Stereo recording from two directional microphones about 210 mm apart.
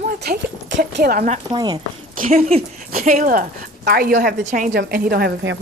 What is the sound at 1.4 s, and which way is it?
Speech, 20° right (ahead or behind).